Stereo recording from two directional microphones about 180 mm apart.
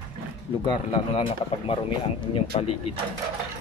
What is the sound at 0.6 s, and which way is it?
Speech, 30° left (ahead or behind).